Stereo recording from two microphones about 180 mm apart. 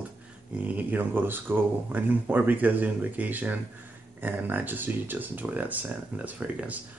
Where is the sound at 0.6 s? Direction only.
10° right (ahead or behind).